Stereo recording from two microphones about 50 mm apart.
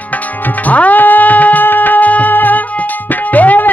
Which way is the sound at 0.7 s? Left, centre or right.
Left.